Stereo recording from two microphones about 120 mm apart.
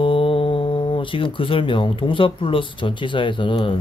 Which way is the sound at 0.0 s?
45° left (ahead or behind).